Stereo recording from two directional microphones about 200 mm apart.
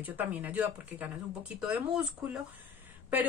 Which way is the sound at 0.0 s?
10° right (ahead or behind).